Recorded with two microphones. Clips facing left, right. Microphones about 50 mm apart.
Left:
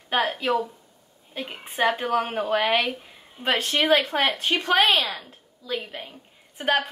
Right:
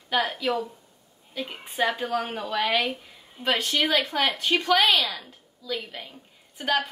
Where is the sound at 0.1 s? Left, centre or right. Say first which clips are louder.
Left 2 dB; left.